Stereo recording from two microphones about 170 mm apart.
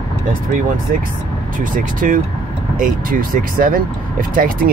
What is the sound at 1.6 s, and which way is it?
Speech, 55° right (ahead or behind).